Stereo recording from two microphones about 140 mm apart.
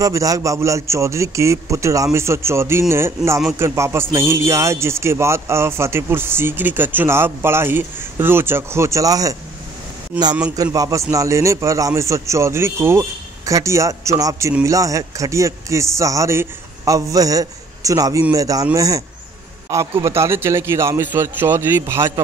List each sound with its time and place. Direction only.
0.0 s a man's voice: 25° right (ahead or behind)
10.5 s a man's voice: 25° right (ahead or behind)